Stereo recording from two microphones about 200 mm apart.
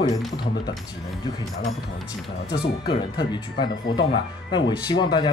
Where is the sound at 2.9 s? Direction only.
20° left (ahead or behind).